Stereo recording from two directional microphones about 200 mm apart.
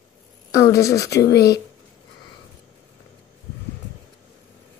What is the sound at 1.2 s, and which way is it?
Speech, 55° left (ahead or behind).